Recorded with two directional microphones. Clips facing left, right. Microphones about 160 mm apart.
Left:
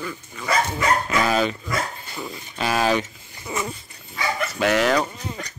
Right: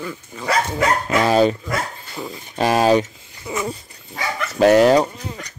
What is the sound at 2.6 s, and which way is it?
Speech, 40° right (ahead or behind).